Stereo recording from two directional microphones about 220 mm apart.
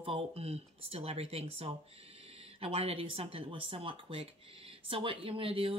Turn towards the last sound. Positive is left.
turn(degrees=-25)  # may be behind; listen again after turning